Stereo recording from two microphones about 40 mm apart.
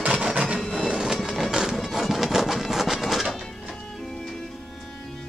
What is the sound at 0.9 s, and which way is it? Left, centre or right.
Train, centre.